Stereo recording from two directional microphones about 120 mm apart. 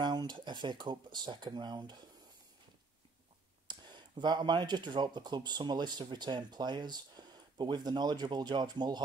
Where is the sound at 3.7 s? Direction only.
40° right (ahead or behind).